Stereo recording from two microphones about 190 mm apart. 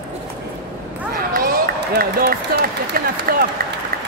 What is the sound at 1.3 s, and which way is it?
Speech, 50° right (ahead or behind).